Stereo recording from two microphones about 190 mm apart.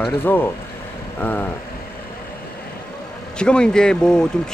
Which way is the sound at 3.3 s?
5° left (ahead or behind).